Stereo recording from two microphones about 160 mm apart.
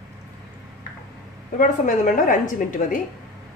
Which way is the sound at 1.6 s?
55° left (ahead or behind).